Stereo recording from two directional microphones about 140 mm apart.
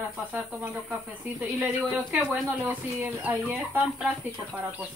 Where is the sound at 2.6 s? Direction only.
10° right (ahead or behind).